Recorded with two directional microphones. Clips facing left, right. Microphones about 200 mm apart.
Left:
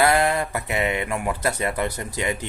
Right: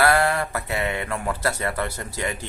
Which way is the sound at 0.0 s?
20° left (ahead or behind).